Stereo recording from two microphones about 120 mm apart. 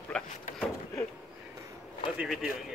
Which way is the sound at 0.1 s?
5° left (ahead or behind).